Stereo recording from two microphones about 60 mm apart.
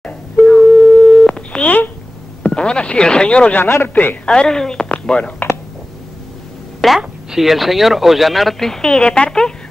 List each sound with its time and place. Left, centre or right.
0.5 s telephone: left
2.4 s speech: centre
3.5 s speech: left
4.3 s a woman's voice: centre
6.8 s speech: centre